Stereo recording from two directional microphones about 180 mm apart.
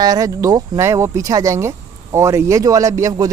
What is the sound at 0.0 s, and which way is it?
Speech, 20° right (ahead or behind).